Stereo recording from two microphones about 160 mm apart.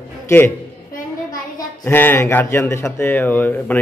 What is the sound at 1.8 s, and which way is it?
A man's voice, 15° left (ahead or behind).